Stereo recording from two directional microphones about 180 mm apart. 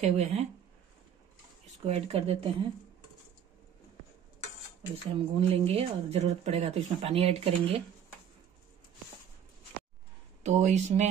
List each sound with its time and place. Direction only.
0.0 s speech: 35° right (ahead or behind)
1.9 s speech: 35° right (ahead or behind)
5.1 s speech: 30° right (ahead or behind)
10.4 s speech: 40° right (ahead or behind)